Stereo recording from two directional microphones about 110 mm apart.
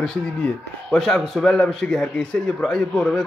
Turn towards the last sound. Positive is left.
turn(degrees=10)  # may be behind; listen again after turning